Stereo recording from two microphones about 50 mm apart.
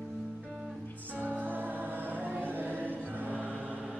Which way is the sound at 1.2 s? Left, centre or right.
Right.